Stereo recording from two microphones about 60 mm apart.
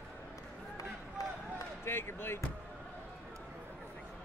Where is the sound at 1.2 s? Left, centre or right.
Left.